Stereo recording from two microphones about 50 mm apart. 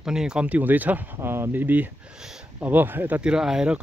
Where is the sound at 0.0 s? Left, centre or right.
Centre.